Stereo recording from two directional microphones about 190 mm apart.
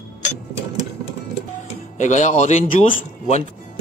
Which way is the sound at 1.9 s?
40° left (ahead or behind).